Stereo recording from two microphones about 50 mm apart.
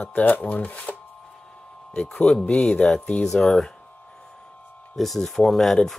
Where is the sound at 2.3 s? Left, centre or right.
Left.